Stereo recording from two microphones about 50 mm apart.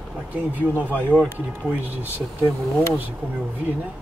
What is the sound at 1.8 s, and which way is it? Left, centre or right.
Speech, right.